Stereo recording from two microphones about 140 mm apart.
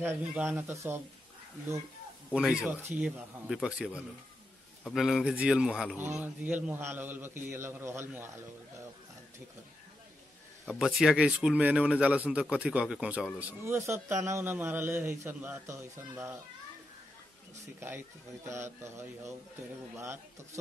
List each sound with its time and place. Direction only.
0.0 s a man's voice: 15° right (ahead or behind)
2.3 s a man's voice: 5° right (ahead or behind)
10.7 s a man's voice: 5° right (ahead or behind); by 16.3 s 20° right (ahead or behind)
17.7 s a man's voice: 15° right (ahead or behind)